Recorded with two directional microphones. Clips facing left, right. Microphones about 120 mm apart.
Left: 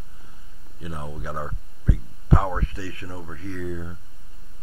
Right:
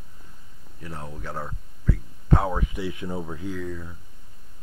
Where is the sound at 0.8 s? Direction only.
10° left (ahead or behind).